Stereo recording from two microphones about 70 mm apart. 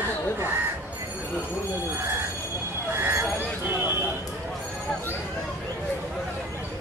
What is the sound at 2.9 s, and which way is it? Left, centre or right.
Vehicle, right.